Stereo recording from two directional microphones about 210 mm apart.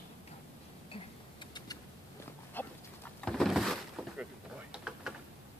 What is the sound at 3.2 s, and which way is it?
Vehicle, centre (ahead or behind).